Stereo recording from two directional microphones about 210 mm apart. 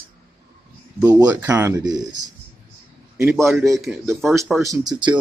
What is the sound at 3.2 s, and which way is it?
A man's voice, 15° right (ahead or behind).